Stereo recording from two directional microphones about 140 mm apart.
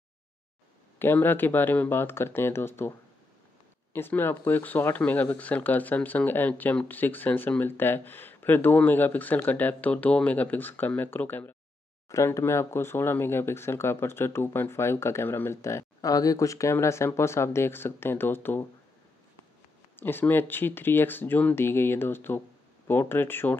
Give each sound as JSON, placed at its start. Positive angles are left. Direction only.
{"t": 0.9, "sound": "speech", "side_deg": 15}
{"t": 3.9, "sound": "speech", "side_deg": 15}
{"t": 20.0, "sound": "speech", "side_deg": 15}